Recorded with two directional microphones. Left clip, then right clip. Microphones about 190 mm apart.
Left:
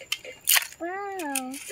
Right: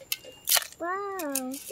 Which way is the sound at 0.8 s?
40° right (ahead or behind).